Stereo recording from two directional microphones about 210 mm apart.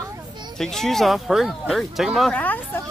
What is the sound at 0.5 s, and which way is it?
Speech, centre (ahead or behind).